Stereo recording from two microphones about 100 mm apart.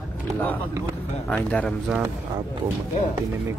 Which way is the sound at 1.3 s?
15° left (ahead or behind).